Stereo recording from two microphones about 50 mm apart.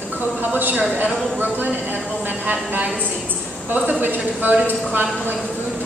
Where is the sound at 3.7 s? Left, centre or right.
Right.